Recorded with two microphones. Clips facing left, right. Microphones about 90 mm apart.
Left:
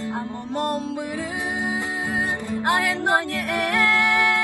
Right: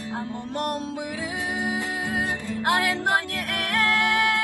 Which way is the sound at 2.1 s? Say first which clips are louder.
Left 2 dB; 20° left (ahead or behind).